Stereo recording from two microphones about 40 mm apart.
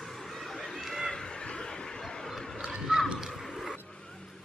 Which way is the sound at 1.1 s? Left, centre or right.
Left.